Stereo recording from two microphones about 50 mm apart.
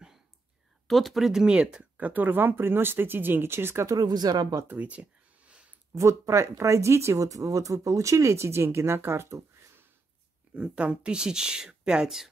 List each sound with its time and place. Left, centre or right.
0.8 s speech: centre
1.4 s speech: centre
2.0 s speech: right
4.6 s a sound: right
5.9 s speech: right
10.5 s speech: right